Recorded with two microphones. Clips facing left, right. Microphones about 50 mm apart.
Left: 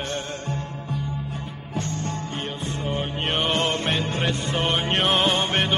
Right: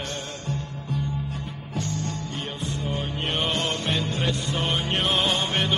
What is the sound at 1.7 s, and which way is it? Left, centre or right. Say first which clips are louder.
Music: left 1 dB; left.